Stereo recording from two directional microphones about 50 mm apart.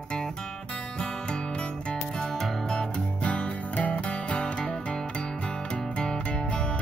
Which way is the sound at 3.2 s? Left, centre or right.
Left.